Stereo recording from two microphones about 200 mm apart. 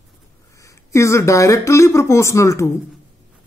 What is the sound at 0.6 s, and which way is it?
Speech, 15° left (ahead or behind).